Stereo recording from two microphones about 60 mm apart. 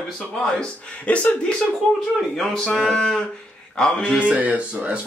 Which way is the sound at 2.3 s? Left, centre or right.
Centre.